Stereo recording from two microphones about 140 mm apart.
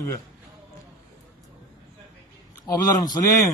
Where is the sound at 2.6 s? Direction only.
25° left (ahead or behind).